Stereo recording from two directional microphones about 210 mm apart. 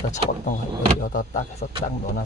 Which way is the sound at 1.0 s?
40° left (ahead or behind).